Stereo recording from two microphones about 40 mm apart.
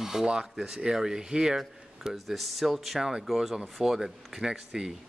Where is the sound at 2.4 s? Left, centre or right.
Centre.